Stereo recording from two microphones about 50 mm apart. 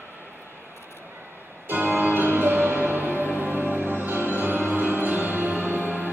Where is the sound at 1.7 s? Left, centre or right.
Right.